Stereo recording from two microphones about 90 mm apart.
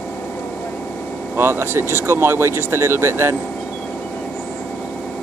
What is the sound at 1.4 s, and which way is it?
Speech, 25° right (ahead or behind).